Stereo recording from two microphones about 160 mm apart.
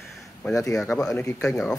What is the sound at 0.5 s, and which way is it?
Speech, 20° left (ahead or behind).